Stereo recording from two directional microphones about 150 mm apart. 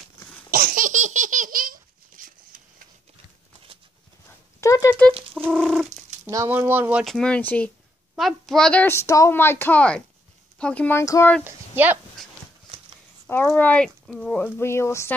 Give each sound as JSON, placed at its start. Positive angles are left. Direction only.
{"t": 0.5, "sound": "laughter", "side_deg": -70}
{"t": 4.6, "sound": "a sound", "side_deg": 20}
{"t": 5.5, "sound": "a sound", "side_deg": 0}
{"t": 6.2, "sound": "speech", "side_deg": -15}
{"t": 7.1, "sound": "a child's voice", "side_deg": 5}
{"t": 8.8, "sound": "speech", "side_deg": 20}
{"t": 11.4, "sound": "speech", "side_deg": -10}
{"t": 13.3, "sound": "speech", "side_deg": 15}